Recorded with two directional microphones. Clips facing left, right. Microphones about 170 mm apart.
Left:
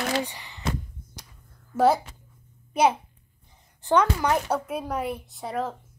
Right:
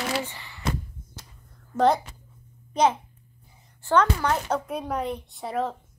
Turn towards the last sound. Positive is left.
turn(degrees=0)  # may be behind; listen again after turning